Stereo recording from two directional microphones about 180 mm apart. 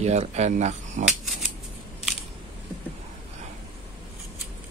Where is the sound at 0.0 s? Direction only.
40° right (ahead or behind).